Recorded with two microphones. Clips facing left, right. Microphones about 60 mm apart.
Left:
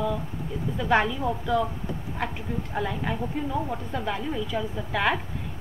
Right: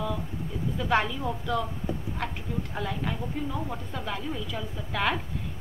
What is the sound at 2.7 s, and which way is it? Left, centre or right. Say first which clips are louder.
A woman's voice: left 5 dB; centre.